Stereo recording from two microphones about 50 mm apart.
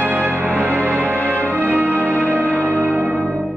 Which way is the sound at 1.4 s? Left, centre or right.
Right.